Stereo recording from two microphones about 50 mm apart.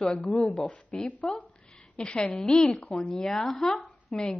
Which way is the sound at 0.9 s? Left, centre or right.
Centre.